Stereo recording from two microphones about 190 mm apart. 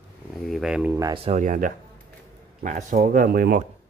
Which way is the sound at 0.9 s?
20° right (ahead or behind).